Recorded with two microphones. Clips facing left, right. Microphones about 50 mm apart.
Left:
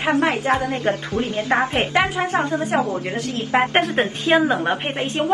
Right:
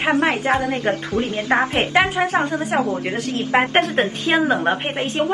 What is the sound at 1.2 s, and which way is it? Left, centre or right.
Speech, centre.